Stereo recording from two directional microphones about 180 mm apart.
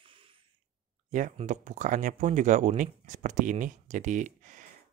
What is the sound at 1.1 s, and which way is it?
Speech, 45° right (ahead or behind).